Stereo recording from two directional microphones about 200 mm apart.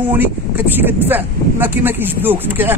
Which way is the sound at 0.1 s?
10° right (ahead or behind).